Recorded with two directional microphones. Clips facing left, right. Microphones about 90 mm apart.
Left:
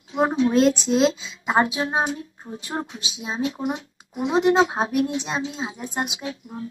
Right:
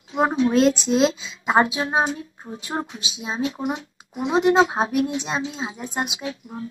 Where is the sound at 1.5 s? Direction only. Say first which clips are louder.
Right 2 dB; 30° right (ahead or behind).